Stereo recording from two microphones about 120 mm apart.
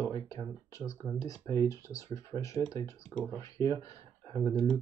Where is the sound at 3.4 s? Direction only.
30° left (ahead or behind).